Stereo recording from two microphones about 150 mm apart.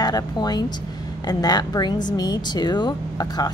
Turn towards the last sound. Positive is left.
turn(degrees=30)  # may be behind; listen again after turning